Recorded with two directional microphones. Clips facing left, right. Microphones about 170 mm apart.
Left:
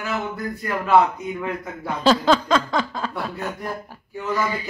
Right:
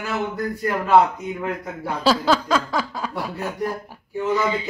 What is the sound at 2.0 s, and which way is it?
A woman's voice, 5° right (ahead or behind).